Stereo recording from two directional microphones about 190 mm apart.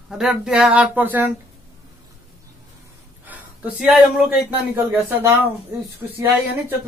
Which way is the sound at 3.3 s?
10° right (ahead or behind).